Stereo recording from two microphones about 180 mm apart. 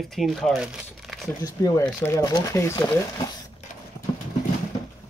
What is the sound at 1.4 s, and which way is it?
Speech, 20° left (ahead or behind).